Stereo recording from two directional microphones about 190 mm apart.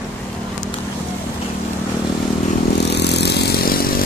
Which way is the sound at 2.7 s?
60° left (ahead or behind).